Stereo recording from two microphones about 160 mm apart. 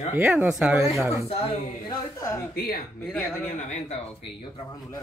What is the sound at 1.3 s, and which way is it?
Speech, 35° left (ahead or behind).